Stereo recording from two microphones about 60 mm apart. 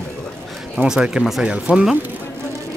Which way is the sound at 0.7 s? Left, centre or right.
Centre.